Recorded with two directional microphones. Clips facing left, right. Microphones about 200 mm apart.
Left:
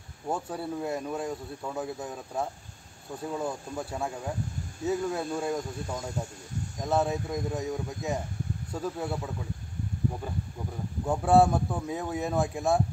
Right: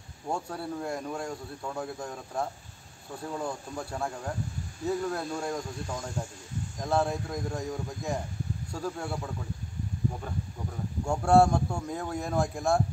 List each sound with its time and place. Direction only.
0.3 s speech: 5° left (ahead or behind)
11.1 s speech: 5° left (ahead or behind)